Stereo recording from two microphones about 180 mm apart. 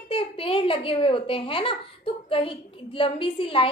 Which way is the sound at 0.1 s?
30° left (ahead or behind).